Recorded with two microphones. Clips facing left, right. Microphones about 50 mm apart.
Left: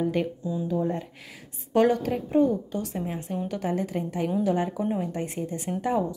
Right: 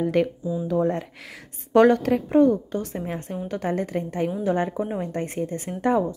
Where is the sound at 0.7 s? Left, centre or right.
Right.